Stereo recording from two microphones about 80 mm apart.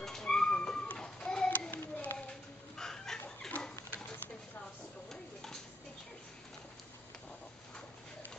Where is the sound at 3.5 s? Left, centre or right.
Centre.